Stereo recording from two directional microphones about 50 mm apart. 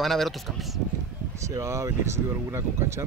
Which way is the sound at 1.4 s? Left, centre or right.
Right.